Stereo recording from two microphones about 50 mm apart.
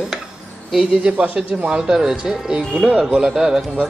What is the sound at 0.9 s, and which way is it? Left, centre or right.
Speech, centre.